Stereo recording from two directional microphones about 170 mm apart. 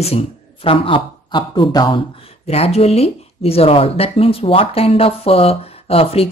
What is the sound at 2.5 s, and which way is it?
Speech, 35° left (ahead or behind).